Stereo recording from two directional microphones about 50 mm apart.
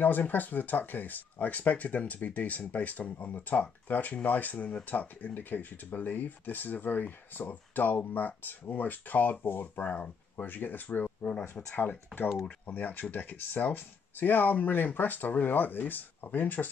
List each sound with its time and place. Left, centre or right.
0.0 s speech: left